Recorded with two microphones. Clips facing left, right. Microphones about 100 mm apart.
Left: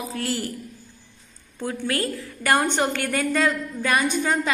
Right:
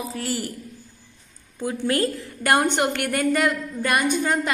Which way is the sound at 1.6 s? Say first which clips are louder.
Right 3 dB; 15° right (ahead or behind).